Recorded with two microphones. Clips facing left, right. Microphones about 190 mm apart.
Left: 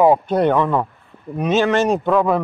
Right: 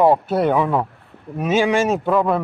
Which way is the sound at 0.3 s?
5° right (ahead or behind).